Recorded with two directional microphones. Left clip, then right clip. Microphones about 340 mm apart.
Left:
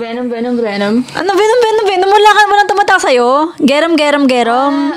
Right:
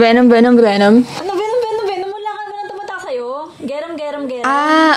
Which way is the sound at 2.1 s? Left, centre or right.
Left.